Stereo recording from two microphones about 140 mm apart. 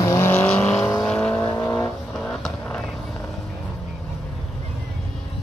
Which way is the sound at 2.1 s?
5° left (ahead or behind).